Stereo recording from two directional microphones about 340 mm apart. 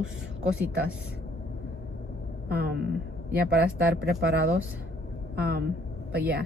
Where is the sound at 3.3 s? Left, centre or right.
Right.